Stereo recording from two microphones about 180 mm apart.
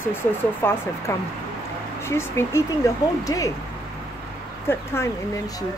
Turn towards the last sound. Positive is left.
turn(degrees=15)  # may be behind; listen again after turning